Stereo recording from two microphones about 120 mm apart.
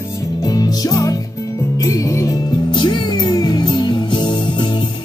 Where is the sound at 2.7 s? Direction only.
40° left (ahead or behind).